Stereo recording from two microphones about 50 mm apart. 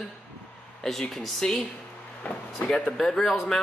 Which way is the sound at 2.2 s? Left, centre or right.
Left.